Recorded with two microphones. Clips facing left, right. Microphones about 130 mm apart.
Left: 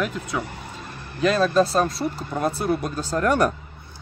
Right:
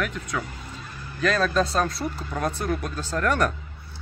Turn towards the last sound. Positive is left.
turn(degrees=15)  # may be behind; listen again after turning